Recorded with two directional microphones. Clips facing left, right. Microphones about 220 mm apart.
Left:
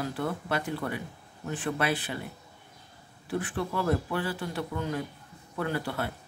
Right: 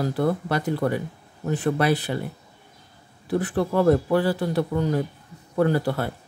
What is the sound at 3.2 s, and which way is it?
Speech, 40° right (ahead or behind).